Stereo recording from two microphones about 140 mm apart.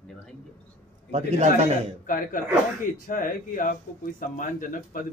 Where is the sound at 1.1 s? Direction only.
55° right (ahead or behind).